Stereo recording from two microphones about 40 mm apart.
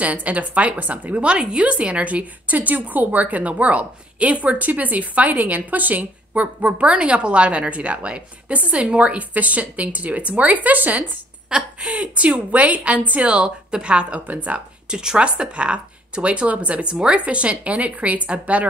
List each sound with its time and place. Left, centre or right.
0.0 s a woman's voice: right
11.5 s speech: right
11.9 s a woman's voice: right
13.2 s speech: right
14.2 s a woman's voice: right
14.9 s speech: centre; by 16.8 s right
16.8 s a woman's voice: right